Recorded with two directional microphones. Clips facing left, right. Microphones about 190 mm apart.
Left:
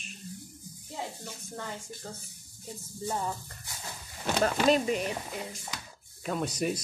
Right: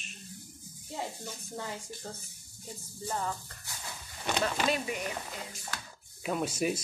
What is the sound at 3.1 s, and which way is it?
Speech, 10° left (ahead or behind).